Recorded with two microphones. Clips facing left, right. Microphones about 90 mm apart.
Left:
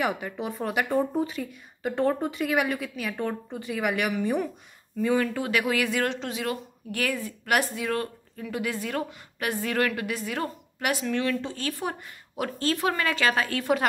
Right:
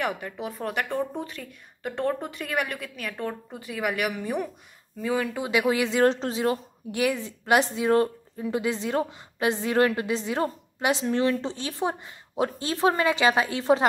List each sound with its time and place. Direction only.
0.0 s speech: centre (ahead or behind)
5.4 s a woman's voice: 20° right (ahead or behind)